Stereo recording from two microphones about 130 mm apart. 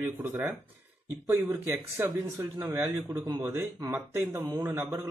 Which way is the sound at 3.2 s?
25° right (ahead or behind).